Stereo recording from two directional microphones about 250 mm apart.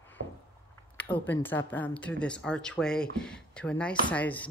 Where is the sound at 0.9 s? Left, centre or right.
Centre.